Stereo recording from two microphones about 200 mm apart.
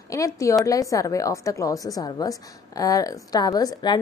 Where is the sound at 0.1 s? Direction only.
15° left (ahead or behind).